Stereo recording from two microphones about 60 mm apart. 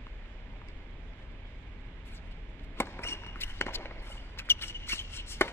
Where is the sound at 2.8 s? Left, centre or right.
Left.